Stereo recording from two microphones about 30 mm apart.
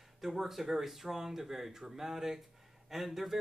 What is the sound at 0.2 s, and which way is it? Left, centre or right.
Speech, centre.